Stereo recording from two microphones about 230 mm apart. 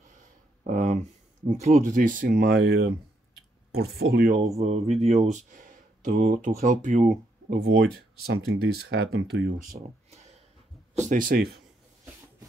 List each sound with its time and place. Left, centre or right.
0.7 s speech: right
4.6 s mantra: right
4.8 s speech: centre
5.2 s speech: right
7.4 s speech: right
11.0 s speech: right